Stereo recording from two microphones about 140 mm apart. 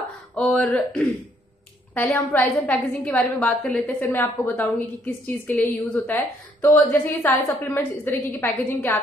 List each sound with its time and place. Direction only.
0.4 s a woman's voice: 5° left (ahead or behind)